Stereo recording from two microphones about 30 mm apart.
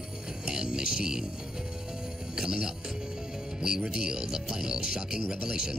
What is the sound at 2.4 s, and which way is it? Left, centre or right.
Speech, right.